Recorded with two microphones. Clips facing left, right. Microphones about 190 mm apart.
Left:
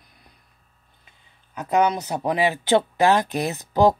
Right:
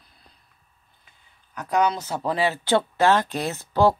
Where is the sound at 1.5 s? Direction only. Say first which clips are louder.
Left 2 dB; 20° left (ahead or behind).